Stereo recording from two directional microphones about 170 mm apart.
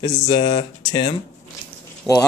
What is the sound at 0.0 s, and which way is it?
Speech, 20° left (ahead or behind).